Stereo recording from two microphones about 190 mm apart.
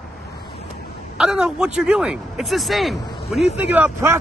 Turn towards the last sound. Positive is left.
turn(degrees=-10)  # may be behind; listen again after turning